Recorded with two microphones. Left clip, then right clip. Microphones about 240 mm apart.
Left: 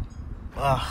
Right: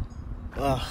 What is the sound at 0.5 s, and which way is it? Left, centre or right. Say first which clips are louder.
Speech: left 3 dB; centre.